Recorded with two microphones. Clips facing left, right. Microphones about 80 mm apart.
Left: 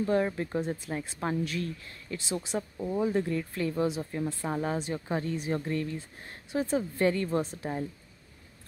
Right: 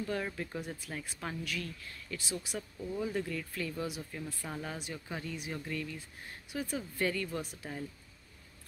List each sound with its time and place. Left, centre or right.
0.0 s speech: left